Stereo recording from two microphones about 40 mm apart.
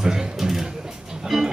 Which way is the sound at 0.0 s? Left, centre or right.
Centre.